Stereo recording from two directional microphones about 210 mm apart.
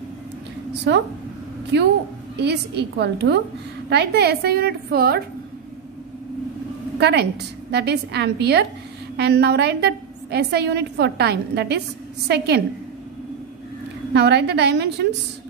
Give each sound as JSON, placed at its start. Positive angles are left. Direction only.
{"t": 0.9, "sound": "speech", "side_deg": -55}
{"t": 2.4, "sound": "a woman's voice", "side_deg": -55}
{"t": 7.0, "sound": "a woman's voice", "side_deg": -50}
{"t": 14.1, "sound": "a woman's voice", "side_deg": -55}